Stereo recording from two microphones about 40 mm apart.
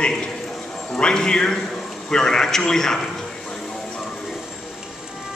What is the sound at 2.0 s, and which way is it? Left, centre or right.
Speech, centre.